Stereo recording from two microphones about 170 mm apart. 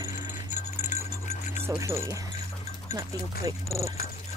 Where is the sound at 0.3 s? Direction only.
45° left (ahead or behind).